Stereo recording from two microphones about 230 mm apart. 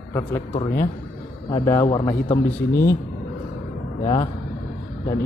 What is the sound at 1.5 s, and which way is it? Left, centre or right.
Speech, centre.